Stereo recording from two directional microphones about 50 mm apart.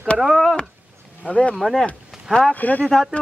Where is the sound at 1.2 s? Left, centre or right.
Left.